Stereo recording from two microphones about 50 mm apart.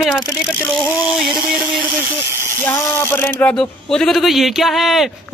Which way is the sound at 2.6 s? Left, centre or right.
Left.